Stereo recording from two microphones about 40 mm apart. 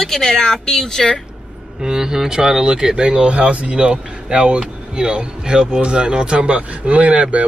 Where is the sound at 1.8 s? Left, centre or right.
Centre.